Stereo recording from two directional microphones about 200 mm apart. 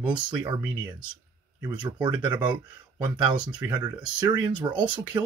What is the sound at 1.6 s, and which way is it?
Speech, 20° right (ahead or behind).